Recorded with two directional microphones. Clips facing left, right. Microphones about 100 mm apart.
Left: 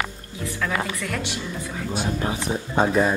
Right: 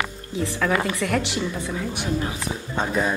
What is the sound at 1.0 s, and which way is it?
Speech, 40° right (ahead or behind).